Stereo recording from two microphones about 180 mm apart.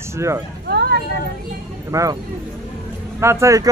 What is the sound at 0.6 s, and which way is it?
Vehicle, 60° right (ahead or behind).